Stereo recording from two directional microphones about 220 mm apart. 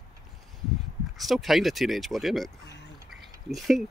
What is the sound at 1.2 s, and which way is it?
Speech, centre (ahead or behind).